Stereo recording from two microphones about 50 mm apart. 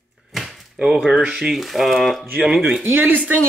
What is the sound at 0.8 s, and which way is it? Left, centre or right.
Speech, centre.